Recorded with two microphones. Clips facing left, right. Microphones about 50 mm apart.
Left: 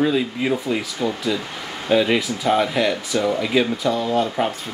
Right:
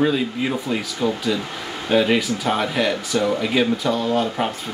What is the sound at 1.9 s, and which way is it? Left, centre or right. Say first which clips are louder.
Speech: even; centre.